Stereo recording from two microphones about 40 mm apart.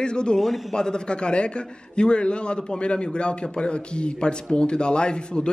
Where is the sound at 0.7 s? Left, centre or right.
Centre.